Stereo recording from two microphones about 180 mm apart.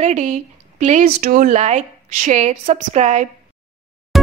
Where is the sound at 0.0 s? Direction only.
45° right (ahead or behind).